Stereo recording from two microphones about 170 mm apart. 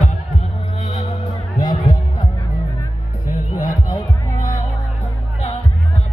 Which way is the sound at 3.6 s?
50° left (ahead or behind).